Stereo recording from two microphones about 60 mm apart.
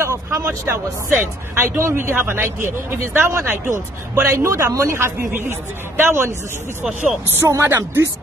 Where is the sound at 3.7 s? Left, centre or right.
Right.